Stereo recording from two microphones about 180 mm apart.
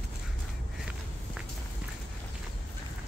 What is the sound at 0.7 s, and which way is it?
Walk, centre (ahead or behind).